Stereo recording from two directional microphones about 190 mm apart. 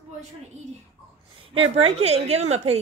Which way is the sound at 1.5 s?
30° right (ahead or behind).